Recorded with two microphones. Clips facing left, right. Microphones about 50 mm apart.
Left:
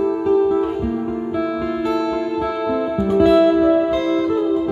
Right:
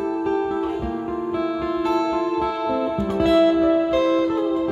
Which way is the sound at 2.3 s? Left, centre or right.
Centre.